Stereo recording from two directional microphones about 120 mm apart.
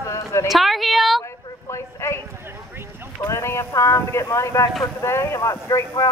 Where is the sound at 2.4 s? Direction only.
20° right (ahead or behind).